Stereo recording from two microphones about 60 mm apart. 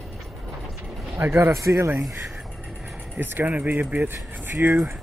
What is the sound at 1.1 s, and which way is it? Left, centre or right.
Speech, right.